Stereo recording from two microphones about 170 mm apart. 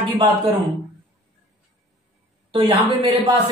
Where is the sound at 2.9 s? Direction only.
35° right (ahead or behind).